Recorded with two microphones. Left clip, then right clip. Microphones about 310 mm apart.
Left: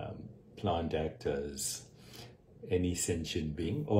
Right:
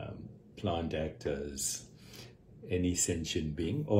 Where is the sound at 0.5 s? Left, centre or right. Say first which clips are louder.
Left 1 dB; centre.